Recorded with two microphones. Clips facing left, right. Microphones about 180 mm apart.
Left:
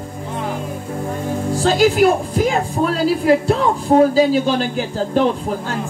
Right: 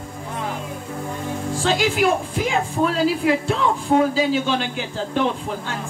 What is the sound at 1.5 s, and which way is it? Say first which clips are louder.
A woman's voice: left 6 dB; 40° left (ahead or behind).